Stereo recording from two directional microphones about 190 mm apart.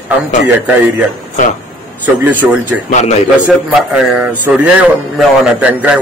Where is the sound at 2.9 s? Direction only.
35° left (ahead or behind).